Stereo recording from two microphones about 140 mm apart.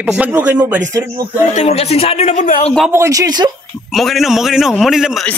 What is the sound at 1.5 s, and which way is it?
Speech, 50° left (ahead or behind).